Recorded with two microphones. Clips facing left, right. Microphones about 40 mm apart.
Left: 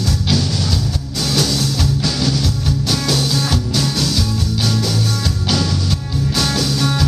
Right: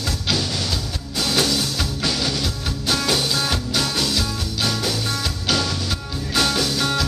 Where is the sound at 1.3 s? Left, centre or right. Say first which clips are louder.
Left 2 dB; right.